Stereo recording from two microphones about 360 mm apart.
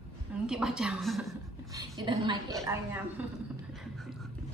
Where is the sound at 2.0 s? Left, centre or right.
Centre.